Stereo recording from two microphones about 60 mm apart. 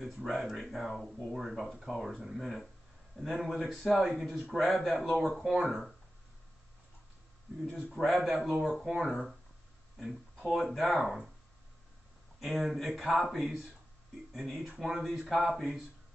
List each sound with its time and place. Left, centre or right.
0.0 s speech: centre
7.9 s speech: centre
8.5 s speech: centre
9.0 s speech: centre
12.4 s speech: centre